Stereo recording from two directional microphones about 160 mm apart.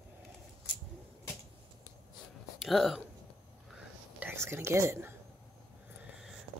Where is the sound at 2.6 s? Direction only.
Centre (ahead or behind).